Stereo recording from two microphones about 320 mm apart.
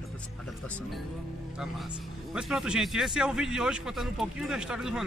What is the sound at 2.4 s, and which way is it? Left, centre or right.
Speech, centre.